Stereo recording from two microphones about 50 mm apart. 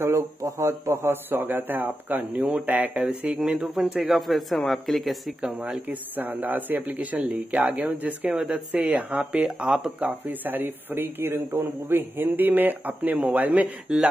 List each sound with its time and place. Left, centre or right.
0.0 s speech: right
1.1 s speech: right
2.9 s speech: right
3.3 s speech: centre
5.9 s speech: right
8.8 s speech: right
13.9 s speech: centre